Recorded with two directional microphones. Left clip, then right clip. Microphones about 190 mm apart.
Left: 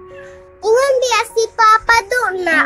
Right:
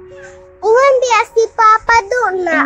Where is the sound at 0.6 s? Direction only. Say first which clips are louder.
Right 3 dB; 10° right (ahead or behind).